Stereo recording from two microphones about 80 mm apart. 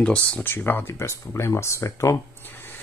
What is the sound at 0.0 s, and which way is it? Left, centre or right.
Speech, centre.